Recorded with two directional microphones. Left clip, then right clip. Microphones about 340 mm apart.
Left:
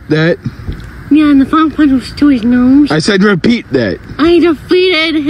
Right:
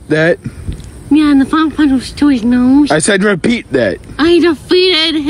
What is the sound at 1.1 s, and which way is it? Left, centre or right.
Speech, centre.